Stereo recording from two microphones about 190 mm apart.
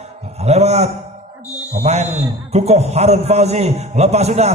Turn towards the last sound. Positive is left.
turn(degrees=-35)  # may be behind; listen again after turning